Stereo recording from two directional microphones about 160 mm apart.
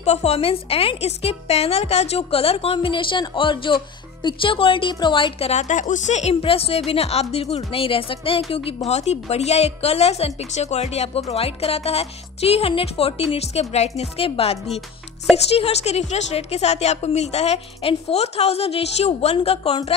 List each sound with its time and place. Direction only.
0.0 s a woman's voice: 40° left (ahead or behind)